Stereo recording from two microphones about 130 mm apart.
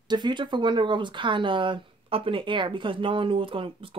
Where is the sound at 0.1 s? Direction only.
35° right (ahead or behind).